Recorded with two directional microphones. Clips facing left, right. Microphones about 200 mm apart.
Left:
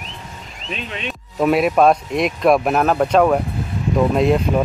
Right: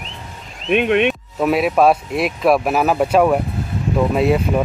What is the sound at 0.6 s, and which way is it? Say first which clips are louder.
Speech: right 14 dB; 65° right (ahead or behind).